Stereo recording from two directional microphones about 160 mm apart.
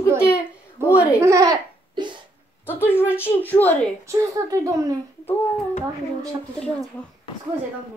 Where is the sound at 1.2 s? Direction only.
20° right (ahead or behind).